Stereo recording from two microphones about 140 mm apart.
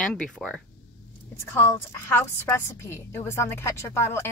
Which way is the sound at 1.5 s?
15° left (ahead or behind).